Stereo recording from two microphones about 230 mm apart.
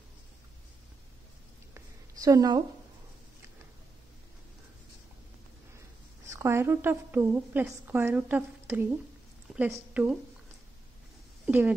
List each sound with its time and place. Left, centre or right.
2.2 s a woman's voice: centre
6.2 s a woman's voice: centre
9.5 s a sound: centre
9.9 s a woman's voice: centre
11.4 s speech: centre